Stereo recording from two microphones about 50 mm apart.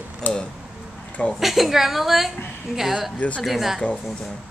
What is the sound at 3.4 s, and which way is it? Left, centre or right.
Speech, centre.